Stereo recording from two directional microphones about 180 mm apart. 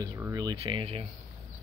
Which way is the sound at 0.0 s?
20° right (ahead or behind).